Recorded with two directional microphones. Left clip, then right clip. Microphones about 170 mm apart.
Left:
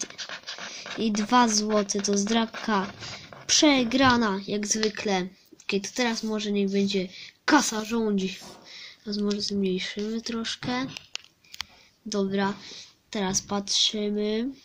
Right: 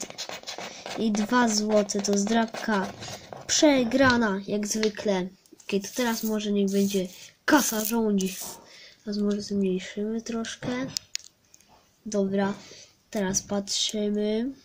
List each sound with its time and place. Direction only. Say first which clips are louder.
0.9 s a woman's voice: left 3 dB; centre (ahead or behind)
9.6 s speech: even; 15° left (ahead or behind)
12.1 s speech: right 1 dB; 5° left (ahead or behind)